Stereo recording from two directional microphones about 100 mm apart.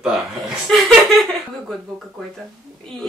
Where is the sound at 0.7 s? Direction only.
5° left (ahead or behind).